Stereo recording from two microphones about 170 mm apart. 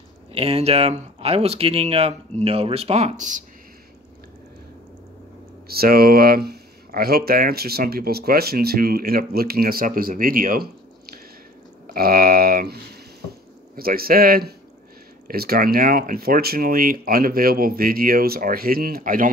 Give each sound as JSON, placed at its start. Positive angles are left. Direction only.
{"t": 0.3, "sound": "speech", "side_deg": -35}
{"t": 5.7, "sound": "speech", "side_deg": -65}